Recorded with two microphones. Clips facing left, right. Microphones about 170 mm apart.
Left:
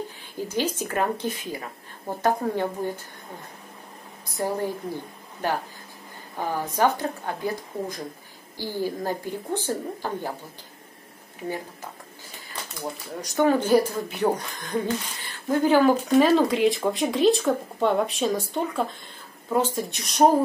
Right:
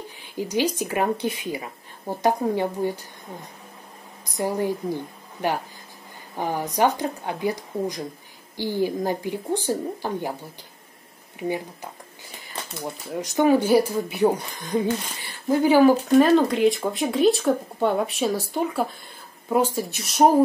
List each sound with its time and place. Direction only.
0.5 s speech: 10° right (ahead or behind)
4.4 s speech: 15° right (ahead or behind)
6.3 s speech: 15° right (ahead or behind)
13.4 s speech: 10° right (ahead or behind)
16.2 s speech: centre (ahead or behind)